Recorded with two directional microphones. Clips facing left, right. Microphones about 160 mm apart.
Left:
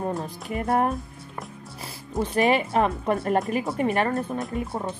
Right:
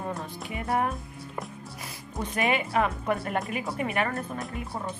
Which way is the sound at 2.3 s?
35° left (ahead or behind).